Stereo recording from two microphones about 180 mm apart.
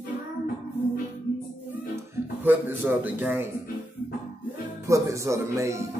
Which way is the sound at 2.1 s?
10° right (ahead or behind).